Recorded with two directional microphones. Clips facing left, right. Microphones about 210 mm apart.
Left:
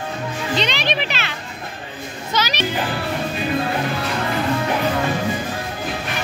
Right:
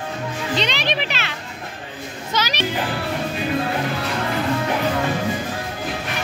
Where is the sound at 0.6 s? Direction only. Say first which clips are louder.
Left 1 dB; 15° left (ahead or behind).